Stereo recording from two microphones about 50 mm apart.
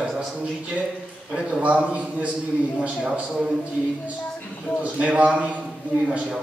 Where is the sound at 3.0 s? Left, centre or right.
Centre.